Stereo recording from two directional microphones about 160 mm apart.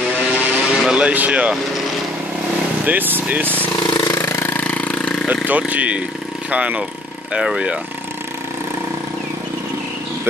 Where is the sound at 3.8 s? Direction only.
25° left (ahead or behind); by 5.3 s 5° left (ahead or behind).